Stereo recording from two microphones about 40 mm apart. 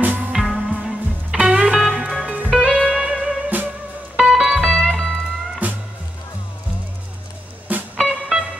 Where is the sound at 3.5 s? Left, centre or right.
Right.